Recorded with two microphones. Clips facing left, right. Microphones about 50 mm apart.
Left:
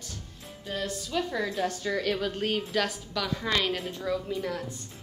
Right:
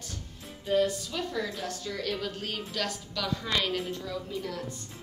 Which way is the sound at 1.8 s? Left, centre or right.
Left.